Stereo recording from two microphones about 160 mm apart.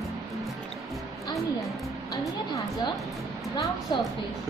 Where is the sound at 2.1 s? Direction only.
20° left (ahead or behind).